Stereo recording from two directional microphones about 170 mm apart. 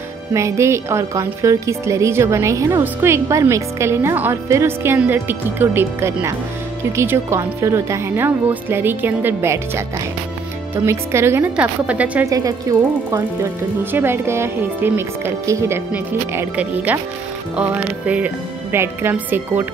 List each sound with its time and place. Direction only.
0.3 s a woman's voice: 15° right (ahead or behind)
10.9 s a woman's voice: 15° right (ahead or behind)
12.3 s a woman's voice: 20° right (ahead or behind)